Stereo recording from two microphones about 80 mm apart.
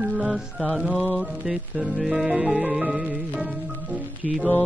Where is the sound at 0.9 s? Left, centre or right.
Centre.